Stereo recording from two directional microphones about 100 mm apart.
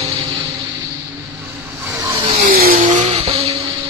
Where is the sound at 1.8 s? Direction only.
30° right (ahead or behind).